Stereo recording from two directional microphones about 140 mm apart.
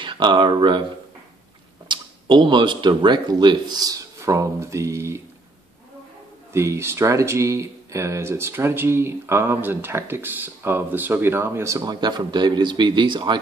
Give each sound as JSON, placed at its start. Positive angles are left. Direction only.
{"t": 0.0, "sound": "speech", "side_deg": -35}
{"t": 1.9, "sound": "speech", "side_deg": -35}
{"t": 6.5, "sound": "speech", "side_deg": -20}